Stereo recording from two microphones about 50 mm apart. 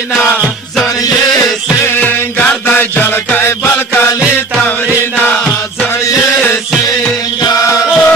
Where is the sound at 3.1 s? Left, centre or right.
Left.